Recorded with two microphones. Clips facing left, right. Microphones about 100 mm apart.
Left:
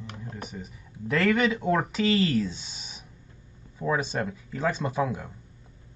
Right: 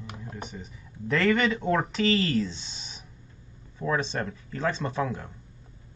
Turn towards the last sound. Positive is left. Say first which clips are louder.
# left 2 dB
turn(degrees=10)  # may be behind; listen again after turning